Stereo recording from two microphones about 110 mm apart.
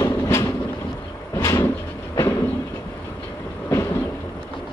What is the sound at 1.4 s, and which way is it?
Vehicle, 30° left (ahead or behind).